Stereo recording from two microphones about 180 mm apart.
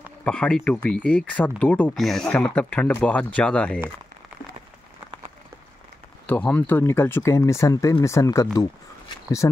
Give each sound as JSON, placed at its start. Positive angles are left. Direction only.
{"t": 0.2, "sound": "speech", "side_deg": 5}
{"t": 6.2, "sound": "speech", "side_deg": 10}